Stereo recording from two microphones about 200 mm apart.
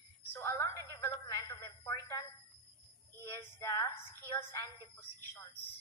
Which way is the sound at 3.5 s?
15° left (ahead or behind).